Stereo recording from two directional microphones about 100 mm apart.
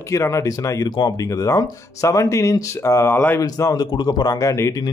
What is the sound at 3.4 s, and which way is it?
Speech, 35° left (ahead or behind).